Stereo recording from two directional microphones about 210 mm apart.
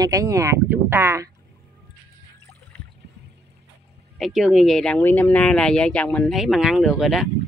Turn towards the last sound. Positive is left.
turn(degrees=0)  # may be behind; listen again after turning